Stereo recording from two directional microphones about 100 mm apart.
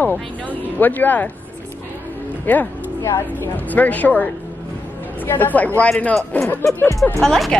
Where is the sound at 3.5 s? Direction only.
15° left (ahead or behind).